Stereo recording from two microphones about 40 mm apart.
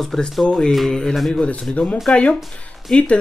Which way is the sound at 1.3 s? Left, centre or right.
Left.